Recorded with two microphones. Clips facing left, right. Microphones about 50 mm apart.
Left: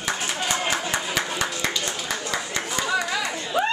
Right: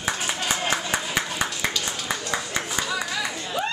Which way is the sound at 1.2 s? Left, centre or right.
Centre.